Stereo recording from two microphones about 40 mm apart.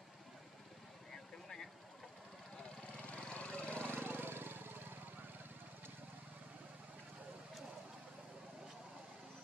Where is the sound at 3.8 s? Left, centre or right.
Right.